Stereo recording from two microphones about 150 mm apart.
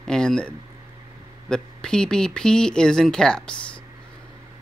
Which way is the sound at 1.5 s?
5° left (ahead or behind).